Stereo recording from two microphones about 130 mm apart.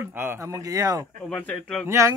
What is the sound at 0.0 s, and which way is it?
Speech, 15° right (ahead or behind).